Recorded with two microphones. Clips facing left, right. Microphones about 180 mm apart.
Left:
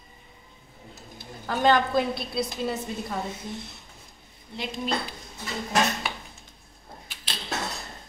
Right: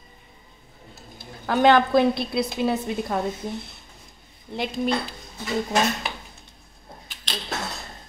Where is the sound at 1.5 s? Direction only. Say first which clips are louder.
Right 5 dB; 75° right (ahead or behind).